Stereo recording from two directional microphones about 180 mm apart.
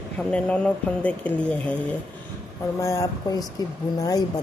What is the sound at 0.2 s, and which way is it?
Speech, 5° left (ahead or behind).